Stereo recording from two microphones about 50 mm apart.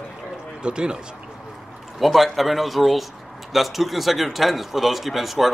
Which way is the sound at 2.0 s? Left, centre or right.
Centre.